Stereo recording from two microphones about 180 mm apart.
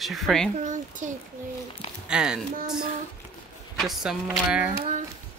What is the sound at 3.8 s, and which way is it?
Speech, centre (ahead or behind).